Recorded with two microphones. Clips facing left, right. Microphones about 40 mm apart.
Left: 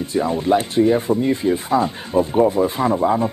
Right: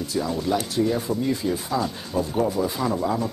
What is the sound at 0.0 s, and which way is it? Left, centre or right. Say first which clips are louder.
Speech: left 5 dB; left.